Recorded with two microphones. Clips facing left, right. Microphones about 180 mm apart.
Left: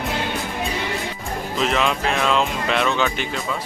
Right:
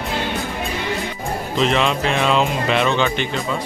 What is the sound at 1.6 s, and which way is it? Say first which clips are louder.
Speech: right 3 dB; 5° left (ahead or behind).